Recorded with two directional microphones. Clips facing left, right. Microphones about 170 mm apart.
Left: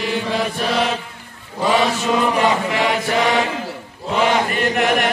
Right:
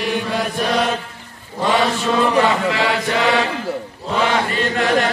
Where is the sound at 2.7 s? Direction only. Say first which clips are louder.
Left 1 dB; 20° left (ahead or behind).